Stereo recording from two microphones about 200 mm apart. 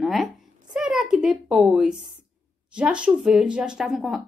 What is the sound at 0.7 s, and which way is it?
A woman's voice, centre (ahead or behind).